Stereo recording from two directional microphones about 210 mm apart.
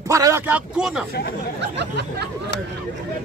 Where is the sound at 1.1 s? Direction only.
50° left (ahead or behind).